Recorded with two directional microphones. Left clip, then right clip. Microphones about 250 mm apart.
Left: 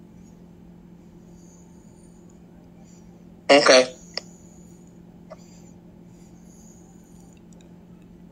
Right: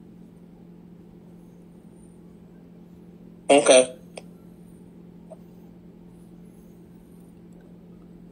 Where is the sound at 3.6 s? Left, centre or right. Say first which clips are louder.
Even; centre.